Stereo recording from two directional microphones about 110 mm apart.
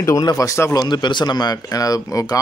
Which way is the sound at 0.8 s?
40° left (ahead or behind).